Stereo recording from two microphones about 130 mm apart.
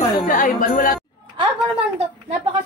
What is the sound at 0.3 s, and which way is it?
Speech, 90° left.